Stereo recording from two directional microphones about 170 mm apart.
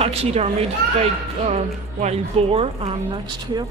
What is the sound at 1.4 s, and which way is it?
A woman's voice, 40° right (ahead or behind).